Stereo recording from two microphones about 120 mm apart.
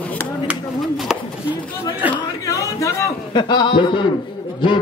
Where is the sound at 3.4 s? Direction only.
40° left (ahead or behind).